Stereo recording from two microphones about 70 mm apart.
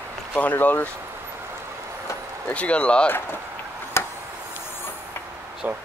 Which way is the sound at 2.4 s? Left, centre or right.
Centre.